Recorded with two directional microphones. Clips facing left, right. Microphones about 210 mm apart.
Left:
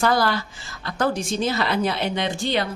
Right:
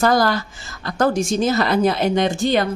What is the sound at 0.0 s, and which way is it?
A woman's voice, 45° right (ahead or behind).